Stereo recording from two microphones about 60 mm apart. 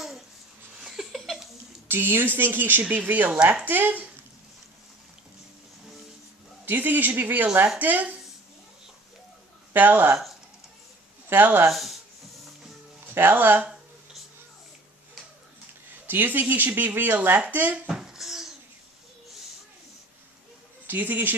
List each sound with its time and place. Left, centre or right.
0.7 s a sound: centre
1.9 s speech: right
6.6 s speech: right
9.8 s speech: right
11.2 s speech: right
11.7 s speech: centre
13.1 s speech: right
16.1 s speech: right
17.8 s a sound: centre
20.8 s a man's voice: right